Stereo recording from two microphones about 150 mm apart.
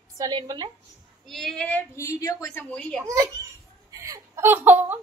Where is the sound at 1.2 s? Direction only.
Centre (ahead or behind); by 2.6 s 20° left (ahead or behind).